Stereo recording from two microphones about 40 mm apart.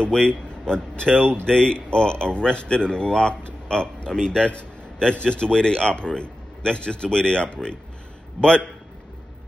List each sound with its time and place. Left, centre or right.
0.1 s speech: left
1.1 s speech: right
1.4 s a man's voice: left